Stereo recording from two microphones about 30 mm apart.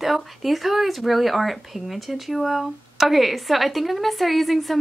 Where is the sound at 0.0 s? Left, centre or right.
Centre.